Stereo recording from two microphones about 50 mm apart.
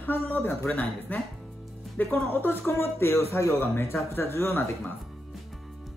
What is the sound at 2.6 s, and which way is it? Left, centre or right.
Speech, left.